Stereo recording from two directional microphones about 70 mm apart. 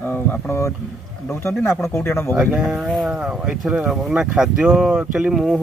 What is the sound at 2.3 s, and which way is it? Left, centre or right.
Speech, centre.